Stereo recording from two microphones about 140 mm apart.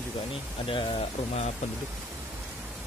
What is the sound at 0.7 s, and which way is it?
Speech, 35° left (ahead or behind).